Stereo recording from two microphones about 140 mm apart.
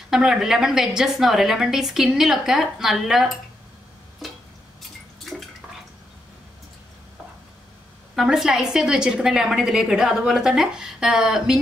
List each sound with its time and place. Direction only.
0.1 s a woman's voice: 5° right (ahead or behind)
4.2 s a sound: centre (ahead or behind)
8.2 s a woman's voice: 5° right (ahead or behind)